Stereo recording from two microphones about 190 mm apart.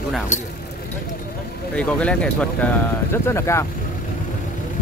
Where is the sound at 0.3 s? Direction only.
40° left (ahead or behind).